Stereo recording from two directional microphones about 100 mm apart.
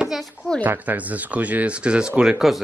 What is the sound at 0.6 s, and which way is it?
Speech, 20° right (ahead or behind).